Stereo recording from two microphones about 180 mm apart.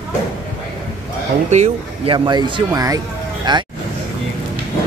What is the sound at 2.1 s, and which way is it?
Speech, 25° right (ahead or behind).